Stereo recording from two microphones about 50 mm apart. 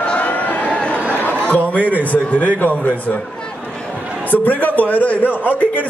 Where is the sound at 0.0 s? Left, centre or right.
Left.